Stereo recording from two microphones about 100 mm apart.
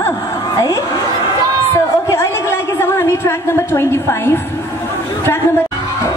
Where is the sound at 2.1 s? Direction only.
25° left (ahead or behind).